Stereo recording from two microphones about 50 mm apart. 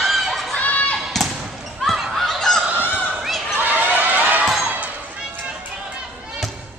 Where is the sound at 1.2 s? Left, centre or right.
Centre.